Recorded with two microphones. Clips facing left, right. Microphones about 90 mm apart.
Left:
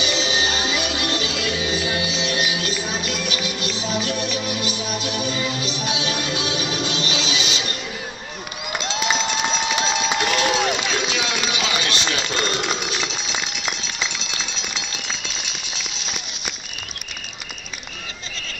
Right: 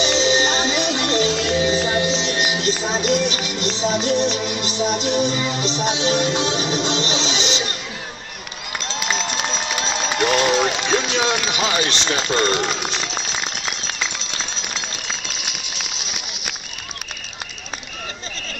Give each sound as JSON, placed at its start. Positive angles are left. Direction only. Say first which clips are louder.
{"t": 0.0, "sound": "music", "louder": "right 5 dB", "side_deg": -30}
{"t": 10.2, "sound": "run", "louder": "right 6 dB", "side_deg": -30}